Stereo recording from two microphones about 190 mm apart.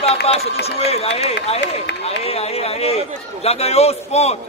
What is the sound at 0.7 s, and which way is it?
Speech, 30° left (ahead or behind).